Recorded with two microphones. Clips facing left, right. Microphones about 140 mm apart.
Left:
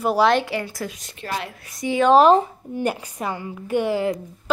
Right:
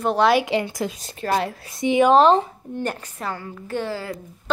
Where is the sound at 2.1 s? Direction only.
5° left (ahead or behind).